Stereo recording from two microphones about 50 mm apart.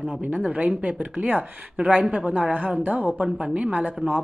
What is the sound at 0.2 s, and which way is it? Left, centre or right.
Speech, right.